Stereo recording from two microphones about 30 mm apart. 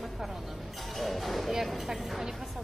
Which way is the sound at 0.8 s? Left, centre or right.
Centre.